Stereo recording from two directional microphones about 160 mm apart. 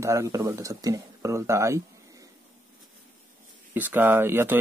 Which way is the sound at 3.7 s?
10° right (ahead or behind).